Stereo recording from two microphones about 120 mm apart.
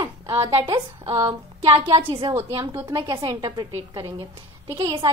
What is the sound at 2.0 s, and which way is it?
Speech, 45° right (ahead or behind).